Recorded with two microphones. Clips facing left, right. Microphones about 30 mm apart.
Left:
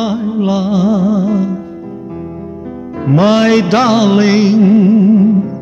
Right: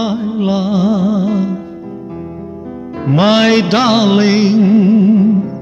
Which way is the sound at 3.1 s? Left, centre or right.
Right.